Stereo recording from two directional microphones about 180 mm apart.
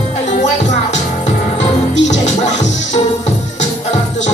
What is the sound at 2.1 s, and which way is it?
Music, 40° left (ahead or behind).